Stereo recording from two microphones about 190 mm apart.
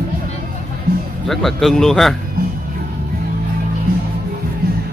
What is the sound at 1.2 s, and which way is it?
Speech, centre (ahead or behind).